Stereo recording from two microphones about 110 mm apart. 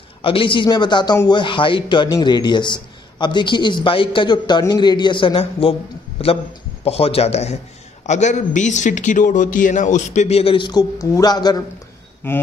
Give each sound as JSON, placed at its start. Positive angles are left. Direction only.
{"t": 0.2, "sound": "a man's voice", "side_deg": 55}
{"t": 6.8, "sound": "speech", "side_deg": 65}
{"t": 8.1, "sound": "a man's voice", "side_deg": 90}
{"t": 10.7, "sound": "speech", "side_deg": 35}
{"t": 12.2, "sound": "speech", "side_deg": 20}